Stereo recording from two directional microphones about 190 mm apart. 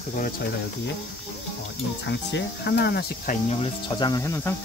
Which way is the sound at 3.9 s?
20° left (ahead or behind).